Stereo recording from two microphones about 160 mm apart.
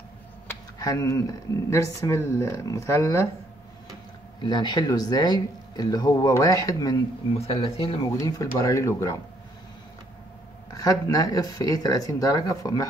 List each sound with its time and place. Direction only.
0.5 s a sound: 20° left (ahead or behind)
1.7 s speech: 20° left (ahead or behind)
4.4 s speech: 30° left (ahead or behind)
8.1 s speech: 20° left (ahead or behind)
10.7 s speech: 20° left (ahead or behind)